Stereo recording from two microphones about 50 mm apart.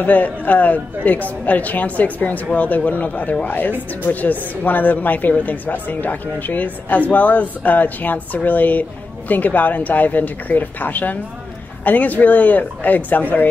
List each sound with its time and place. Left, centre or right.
0.0 s speech: left